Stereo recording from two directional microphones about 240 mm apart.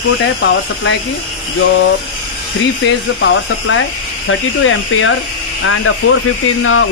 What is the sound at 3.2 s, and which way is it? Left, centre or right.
Speech, left.